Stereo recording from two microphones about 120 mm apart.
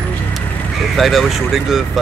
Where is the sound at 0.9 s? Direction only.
Centre (ahead or behind).